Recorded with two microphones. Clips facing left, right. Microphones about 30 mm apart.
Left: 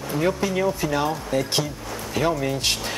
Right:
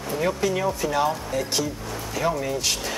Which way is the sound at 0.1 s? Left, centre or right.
Centre.